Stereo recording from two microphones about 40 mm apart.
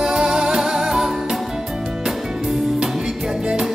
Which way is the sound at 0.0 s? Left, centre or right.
Centre.